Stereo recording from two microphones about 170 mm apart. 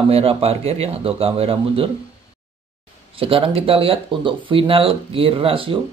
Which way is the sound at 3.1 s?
30° right (ahead or behind).